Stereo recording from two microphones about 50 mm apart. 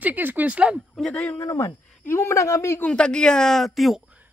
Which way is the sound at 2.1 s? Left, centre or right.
Left.